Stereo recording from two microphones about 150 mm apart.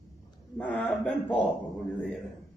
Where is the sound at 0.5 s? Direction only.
10° left (ahead or behind).